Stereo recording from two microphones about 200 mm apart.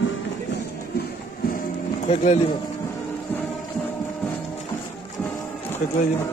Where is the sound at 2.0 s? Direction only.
35° left (ahead or behind).